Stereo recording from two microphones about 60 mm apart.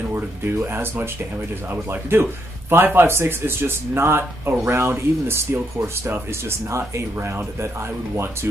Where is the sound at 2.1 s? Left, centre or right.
Right.